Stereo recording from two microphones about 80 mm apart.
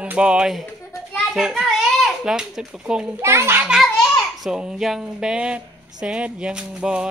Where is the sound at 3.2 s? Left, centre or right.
Right.